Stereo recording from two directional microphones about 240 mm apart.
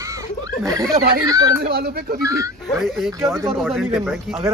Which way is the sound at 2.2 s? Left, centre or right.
Centre.